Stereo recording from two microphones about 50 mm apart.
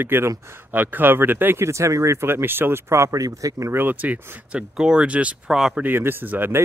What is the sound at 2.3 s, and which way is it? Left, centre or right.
Speech, right.